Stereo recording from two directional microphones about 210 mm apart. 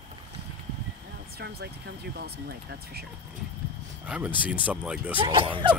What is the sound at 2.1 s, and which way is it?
Speech, 50° right (ahead or behind).